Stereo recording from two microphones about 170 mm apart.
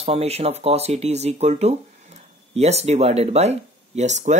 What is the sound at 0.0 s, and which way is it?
Speech, 35° right (ahead or behind).